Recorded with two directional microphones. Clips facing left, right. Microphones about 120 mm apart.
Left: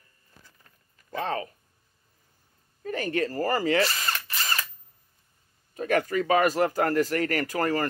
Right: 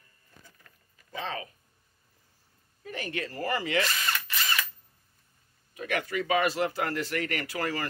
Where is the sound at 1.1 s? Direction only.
50° left (ahead or behind).